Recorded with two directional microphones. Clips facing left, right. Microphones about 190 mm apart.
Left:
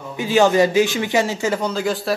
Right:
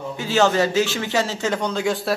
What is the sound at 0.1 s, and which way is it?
A man's voice, 15° left (ahead or behind).